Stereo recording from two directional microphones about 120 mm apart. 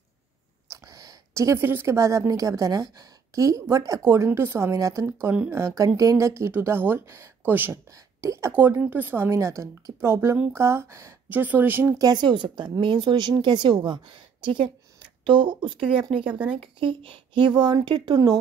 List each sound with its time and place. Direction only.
0.7 s a woman's voice: 25° right (ahead or behind)
5.0 s speech: 15° right (ahead or behind)
12.0 s speech: 35° right (ahead or behind)